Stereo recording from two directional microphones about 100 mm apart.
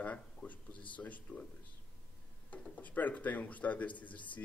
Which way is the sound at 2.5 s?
15° left (ahead or behind).